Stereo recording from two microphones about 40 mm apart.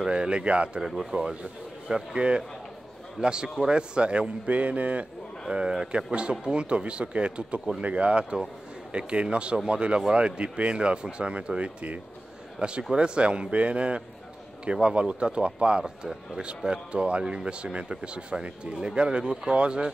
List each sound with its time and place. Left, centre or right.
0.1 s speech: right
0.7 s speech: centre
4.5 s mantra: right
5.5 s a man's voice: right